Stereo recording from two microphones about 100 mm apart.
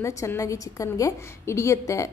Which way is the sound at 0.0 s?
30° left (ahead or behind).